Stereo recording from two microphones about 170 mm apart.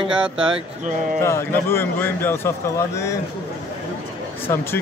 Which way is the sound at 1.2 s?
15° left (ahead or behind).